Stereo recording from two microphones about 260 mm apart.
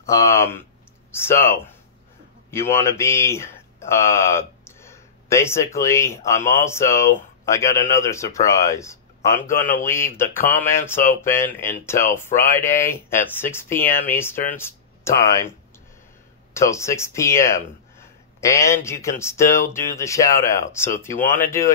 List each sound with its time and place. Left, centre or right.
0.0 s speech: centre
16.5 s speech: centre
21.2 s speech: left